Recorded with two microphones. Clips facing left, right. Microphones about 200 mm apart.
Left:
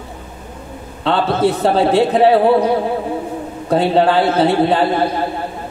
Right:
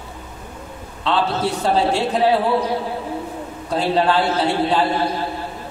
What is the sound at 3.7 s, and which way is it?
A man's voice, 55° left (ahead or behind).